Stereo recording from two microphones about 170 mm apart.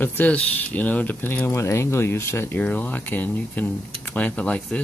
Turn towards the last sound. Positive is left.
turn(degrees=10)  # may be behind; listen again after turning